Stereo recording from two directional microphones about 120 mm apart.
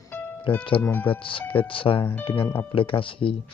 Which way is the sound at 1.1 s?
45° left (ahead or behind).